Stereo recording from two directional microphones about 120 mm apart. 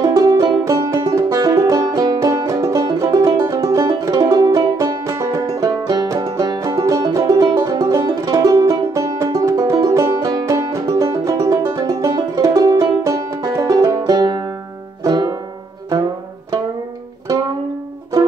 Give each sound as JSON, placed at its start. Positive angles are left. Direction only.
{"t": 0.0, "sound": "music", "side_deg": -30}
{"t": 15.0, "sound": "banjo", "side_deg": -35}